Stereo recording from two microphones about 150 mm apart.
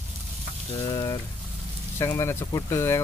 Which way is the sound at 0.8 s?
25° left (ahead or behind).